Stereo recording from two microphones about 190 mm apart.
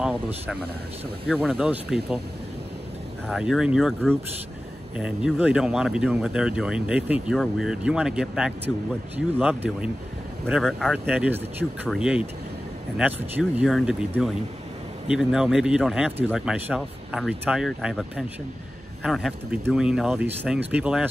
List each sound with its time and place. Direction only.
0.0 s speech: 5° right (ahead or behind)
1.6 s speech: 5° right (ahead or behind)
3.3 s speech: 5° right (ahead or behind)